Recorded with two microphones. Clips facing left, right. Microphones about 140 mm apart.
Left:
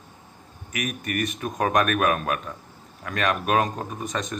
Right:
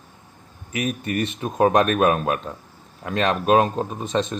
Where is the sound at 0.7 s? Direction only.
25° right (ahead or behind).